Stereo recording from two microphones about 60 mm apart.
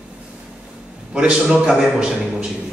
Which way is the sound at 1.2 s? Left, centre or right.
Centre.